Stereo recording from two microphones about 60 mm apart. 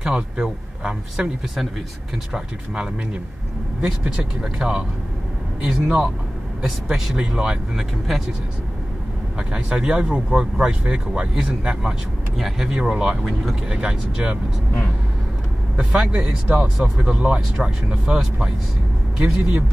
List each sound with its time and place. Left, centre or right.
0.0 s speech: centre
2.3 s speech: centre
9.7 s speech: centre
15.7 s speech: centre